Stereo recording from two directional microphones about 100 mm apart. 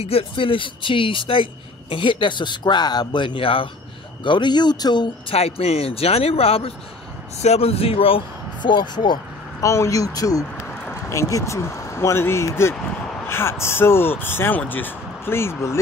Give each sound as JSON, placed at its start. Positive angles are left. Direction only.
{"t": 0.0, "sound": "speech", "side_deg": 75}
{"t": 4.2, "sound": "speech", "side_deg": 50}
{"t": 5.3, "sound": "speech", "side_deg": 90}
{"t": 8.6, "sound": "speech", "side_deg": 50}
{"t": 9.6, "sound": "speech", "side_deg": 30}